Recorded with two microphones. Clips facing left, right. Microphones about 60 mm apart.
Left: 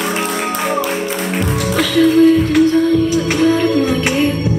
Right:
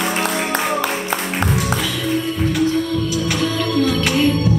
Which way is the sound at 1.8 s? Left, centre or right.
Left.